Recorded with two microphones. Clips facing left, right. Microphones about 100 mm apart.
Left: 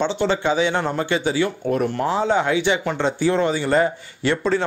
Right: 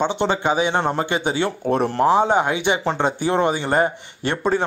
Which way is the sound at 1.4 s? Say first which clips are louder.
Right 1 dB; 35° right (ahead or behind).